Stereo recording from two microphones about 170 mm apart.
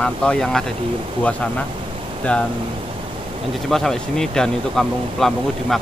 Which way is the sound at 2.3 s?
10° left (ahead or behind).